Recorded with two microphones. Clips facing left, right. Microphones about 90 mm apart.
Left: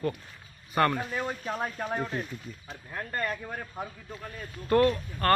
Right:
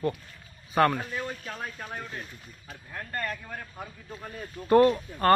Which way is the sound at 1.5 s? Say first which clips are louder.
Left 6 dB; 30° left (ahead or behind).